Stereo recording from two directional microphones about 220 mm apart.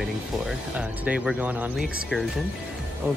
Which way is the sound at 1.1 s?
5° right (ahead or behind).